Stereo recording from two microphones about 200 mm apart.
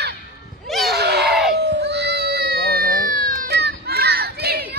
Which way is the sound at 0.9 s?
55° right (ahead or behind).